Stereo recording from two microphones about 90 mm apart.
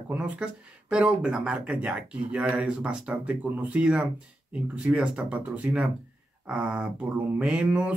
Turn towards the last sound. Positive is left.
turn(degrees=-15)  # may be behind; listen again after turning